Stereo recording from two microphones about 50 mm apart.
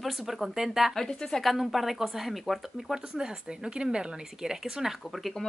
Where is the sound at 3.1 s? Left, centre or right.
Centre.